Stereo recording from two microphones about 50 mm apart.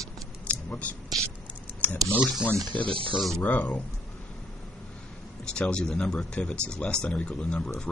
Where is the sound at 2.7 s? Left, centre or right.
Left.